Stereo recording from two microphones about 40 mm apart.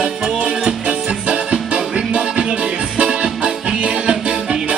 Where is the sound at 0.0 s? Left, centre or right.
Right.